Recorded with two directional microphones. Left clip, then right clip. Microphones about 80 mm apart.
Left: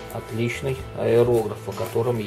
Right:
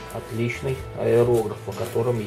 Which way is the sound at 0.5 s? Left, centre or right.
Left.